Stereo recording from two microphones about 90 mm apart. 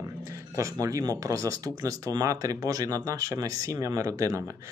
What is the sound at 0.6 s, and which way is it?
Speech, 40° right (ahead or behind).